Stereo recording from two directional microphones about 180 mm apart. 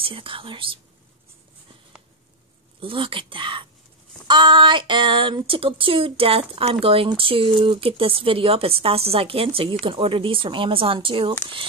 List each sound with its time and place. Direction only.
0.0 s speech: 30° right (ahead or behind)
2.8 s speech: 30° right (ahead or behind)